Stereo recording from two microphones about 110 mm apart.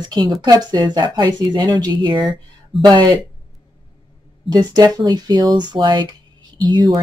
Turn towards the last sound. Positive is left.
turn(degrees=-40)  # may be behind; listen again after turning